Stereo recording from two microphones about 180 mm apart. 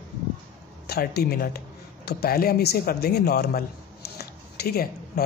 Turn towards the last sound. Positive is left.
turn(degrees=60)  # may be behind; listen again after turning